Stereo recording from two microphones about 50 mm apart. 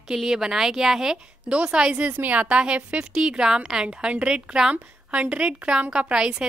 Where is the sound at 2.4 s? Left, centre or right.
Right.